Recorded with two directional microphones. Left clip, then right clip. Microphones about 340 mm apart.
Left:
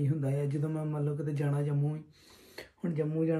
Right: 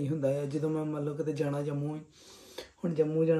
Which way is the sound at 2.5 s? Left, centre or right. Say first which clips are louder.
Right 3 dB; centre.